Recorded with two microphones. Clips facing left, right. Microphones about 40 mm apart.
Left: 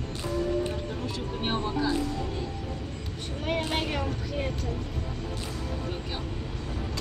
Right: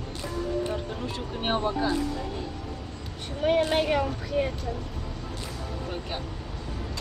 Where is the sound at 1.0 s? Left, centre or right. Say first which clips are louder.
Right 2 dB; right.